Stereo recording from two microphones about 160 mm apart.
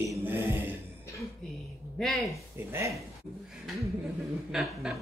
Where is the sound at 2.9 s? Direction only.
Centre (ahead or behind).